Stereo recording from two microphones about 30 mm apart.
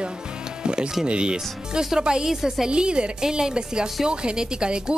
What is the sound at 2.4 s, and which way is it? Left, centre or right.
Speech, centre.